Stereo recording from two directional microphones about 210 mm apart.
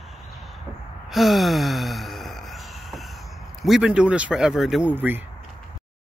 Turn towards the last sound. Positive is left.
turn(degrees=-10)  # may be behind; listen again after turning